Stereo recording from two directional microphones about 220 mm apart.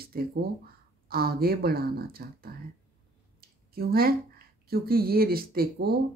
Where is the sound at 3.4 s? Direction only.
45° right (ahead or behind).